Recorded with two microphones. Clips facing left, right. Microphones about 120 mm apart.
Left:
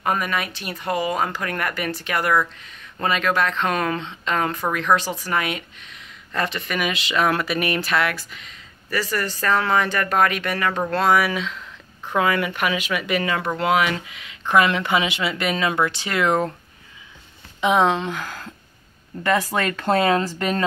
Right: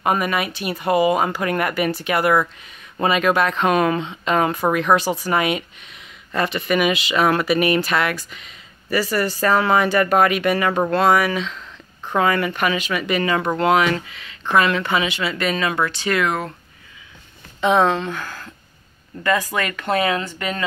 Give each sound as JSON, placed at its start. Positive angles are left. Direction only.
{"t": 0.0, "sound": "speech", "side_deg": -10}
{"t": 6.3, "sound": "speech", "side_deg": -5}
{"t": 17.6, "sound": "speech", "side_deg": 10}